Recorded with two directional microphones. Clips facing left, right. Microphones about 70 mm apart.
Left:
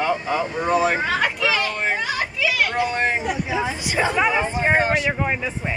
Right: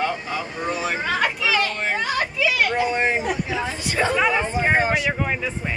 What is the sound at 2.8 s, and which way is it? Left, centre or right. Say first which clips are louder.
Speech: even; centre.